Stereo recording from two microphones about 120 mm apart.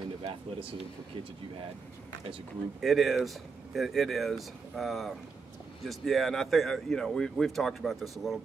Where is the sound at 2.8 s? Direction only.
Centre (ahead or behind).